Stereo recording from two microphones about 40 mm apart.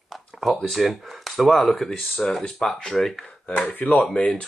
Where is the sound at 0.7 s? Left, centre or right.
Centre.